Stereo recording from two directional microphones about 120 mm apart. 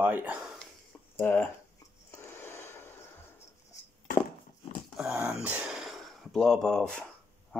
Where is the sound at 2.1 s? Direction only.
20° left (ahead or behind).